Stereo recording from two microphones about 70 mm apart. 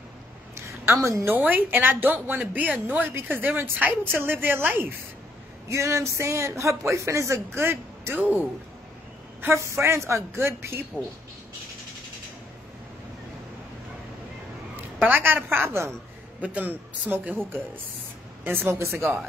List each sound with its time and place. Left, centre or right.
0.6 s a sound: right
1.3 s a woman's voice: right
5.7 s speech: right
8.2 s a woman's voice: right
9.4 s a man's voice: right
14.8 s a woman's voice: right
16.3 s a woman's voice: right
18.4 s speech: right